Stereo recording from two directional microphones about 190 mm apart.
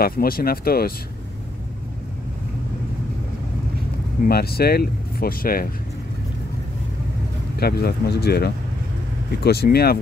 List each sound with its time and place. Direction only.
0.0 s speech: 50° left (ahead or behind)
4.2 s speech: 55° left (ahead or behind)
7.5 s speech: 55° left (ahead or behind)